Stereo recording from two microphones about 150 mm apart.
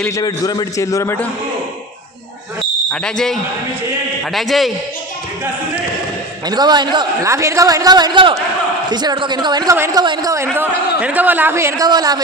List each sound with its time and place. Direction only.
0.1 s a man's voice: 25° left (ahead or behind)
2.9 s speech: 5° left (ahead or behind)
6.4 s a man's voice: 30° right (ahead or behind)
7.2 s a man's voice: 20° right (ahead or behind)